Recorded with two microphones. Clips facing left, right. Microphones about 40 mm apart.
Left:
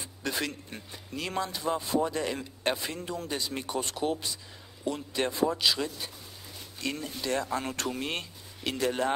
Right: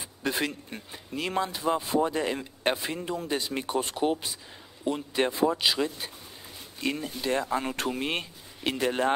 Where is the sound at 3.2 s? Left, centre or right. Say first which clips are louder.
Right 4 dB; right.